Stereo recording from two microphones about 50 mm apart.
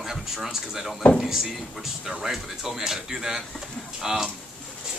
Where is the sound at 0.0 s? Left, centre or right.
Centre.